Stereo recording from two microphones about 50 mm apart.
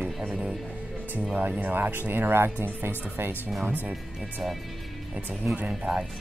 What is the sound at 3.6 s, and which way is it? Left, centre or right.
Speech, right.